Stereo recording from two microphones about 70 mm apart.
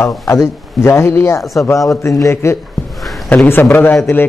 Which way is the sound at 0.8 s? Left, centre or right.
Left.